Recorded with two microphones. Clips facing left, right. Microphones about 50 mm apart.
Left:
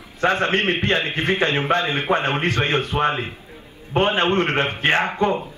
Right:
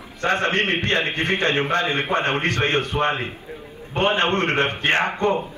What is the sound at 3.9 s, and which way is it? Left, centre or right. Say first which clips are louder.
Speech: left 1 dB; left.